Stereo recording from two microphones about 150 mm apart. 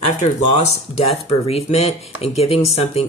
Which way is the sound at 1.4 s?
45° left (ahead or behind).